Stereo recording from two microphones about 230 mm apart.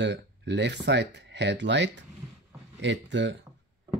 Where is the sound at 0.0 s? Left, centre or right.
Right.